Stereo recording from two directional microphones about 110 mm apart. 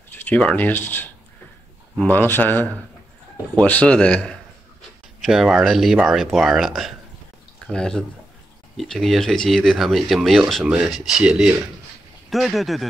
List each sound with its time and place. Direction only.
0.1 s speech: 15° left (ahead or behind)
5.2 s speech: 5° right (ahead or behind)